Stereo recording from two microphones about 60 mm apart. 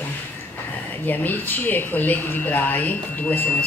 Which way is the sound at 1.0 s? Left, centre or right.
Left.